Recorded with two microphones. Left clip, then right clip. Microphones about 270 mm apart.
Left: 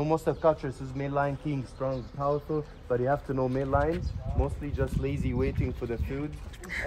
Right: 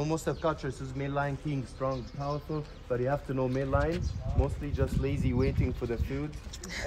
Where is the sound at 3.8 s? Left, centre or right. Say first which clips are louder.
Left 3 dB; centre.